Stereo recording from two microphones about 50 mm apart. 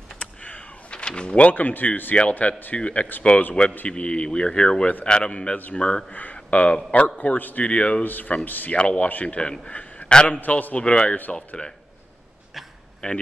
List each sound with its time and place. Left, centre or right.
0.2 s a sound: left
2.3 s a man's voice: left
7.6 s a man's voice: left
8.0 s a man's voice: left
8.7 s a man's voice: left
12.6 s a sound: centre
13.0 s a man's voice: left